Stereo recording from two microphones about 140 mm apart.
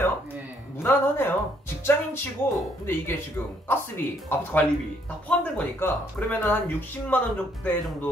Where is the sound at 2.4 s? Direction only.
15° left (ahead or behind).